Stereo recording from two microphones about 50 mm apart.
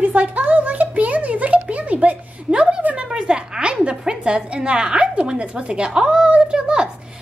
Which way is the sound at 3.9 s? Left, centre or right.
Centre.